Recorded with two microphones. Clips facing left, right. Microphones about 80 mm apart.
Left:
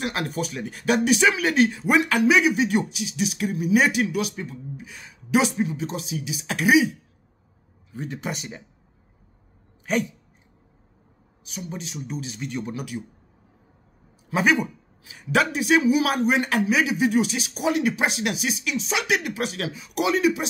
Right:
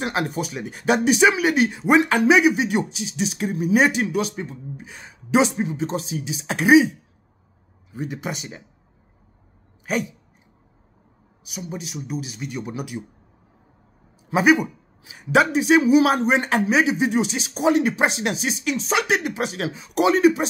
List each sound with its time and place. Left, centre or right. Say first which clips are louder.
0.0 s speech: right 3 dB; right
7.9 s a man's voice: right 2 dB; centre
9.9 s a man's voice: even; centre
11.4 s a man's voice: right 2 dB; centre
14.3 s speech: right 4 dB; centre; by 20.4 s right